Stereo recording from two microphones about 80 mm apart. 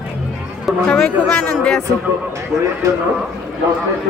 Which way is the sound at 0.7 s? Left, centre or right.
Centre.